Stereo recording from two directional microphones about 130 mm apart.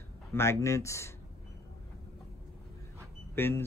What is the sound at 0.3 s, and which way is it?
Speech, 20° left (ahead or behind).